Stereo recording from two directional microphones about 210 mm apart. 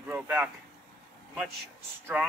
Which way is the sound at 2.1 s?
5° right (ahead or behind).